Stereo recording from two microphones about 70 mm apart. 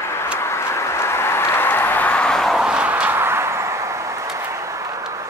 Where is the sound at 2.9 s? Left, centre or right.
Right.